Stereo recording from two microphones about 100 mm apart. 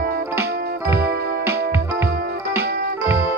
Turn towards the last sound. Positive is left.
turn(degrees=-25)  # may be behind; listen again after turning